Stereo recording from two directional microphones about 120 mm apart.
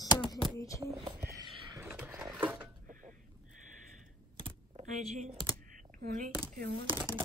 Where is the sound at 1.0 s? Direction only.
30° right (ahead or behind).